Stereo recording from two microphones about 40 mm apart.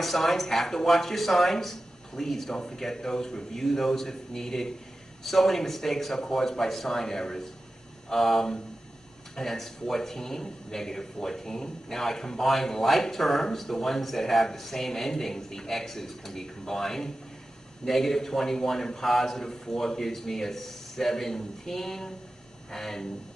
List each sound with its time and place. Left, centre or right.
0.0 s a man's voice: centre